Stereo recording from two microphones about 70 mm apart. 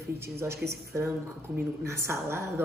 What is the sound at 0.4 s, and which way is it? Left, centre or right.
A man's voice, right.